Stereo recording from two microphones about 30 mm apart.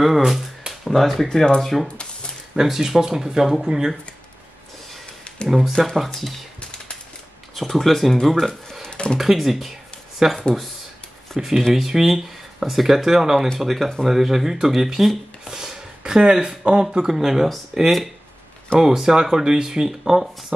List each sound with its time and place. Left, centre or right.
0.0 s speech: centre
2.6 s speech: centre
5.7 s speech: centre
5.9 s speech: centre
7.5 s speech: centre
8.9 s a sound: left
9.2 s speech: centre
15.4 s a sound: centre
16.0 s speech: right
17.0 s speech: centre